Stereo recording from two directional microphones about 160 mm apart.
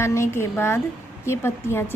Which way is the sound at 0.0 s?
15° left (ahead or behind).